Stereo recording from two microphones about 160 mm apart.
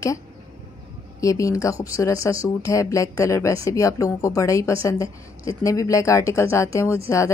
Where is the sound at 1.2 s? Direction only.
20° left (ahead or behind).